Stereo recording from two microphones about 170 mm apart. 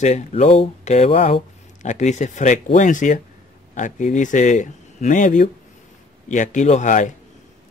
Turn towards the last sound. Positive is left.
turn(degrees=45)  # may be behind; listen again after turning